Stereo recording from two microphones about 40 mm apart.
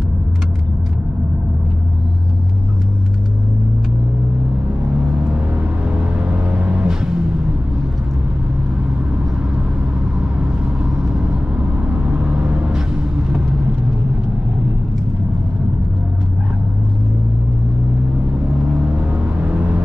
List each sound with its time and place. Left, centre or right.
5.3 s music: right; by 7.2 s centre
11.0 s vehicle: right
12.7 s vehicle: right
18.8 s vehicle: right